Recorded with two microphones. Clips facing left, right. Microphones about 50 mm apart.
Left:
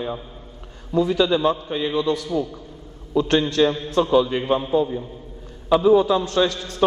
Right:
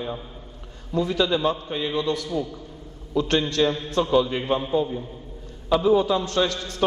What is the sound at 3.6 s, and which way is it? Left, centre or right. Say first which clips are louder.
Speech: left 3 dB; centre.